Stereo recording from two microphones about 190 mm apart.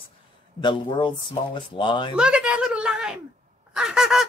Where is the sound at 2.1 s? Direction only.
5° right (ahead or behind).